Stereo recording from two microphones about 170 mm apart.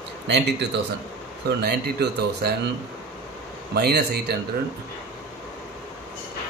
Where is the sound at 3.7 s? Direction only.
70° right (ahead or behind).